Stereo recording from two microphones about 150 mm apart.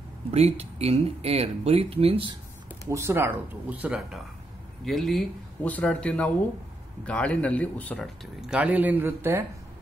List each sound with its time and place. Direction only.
0.3 s speech: 45° right (ahead or behind)
2.9 s speech: 20° right (ahead or behind); by 8.1 s 10° left (ahead or behind)
8.4 s speech: 5° right (ahead or behind)